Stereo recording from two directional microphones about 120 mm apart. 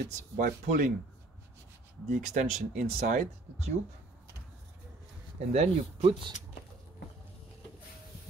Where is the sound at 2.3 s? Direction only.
90° right.